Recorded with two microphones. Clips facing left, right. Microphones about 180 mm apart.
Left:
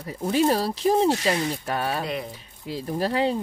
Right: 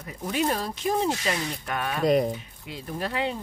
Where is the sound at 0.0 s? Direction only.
35° left (ahead or behind).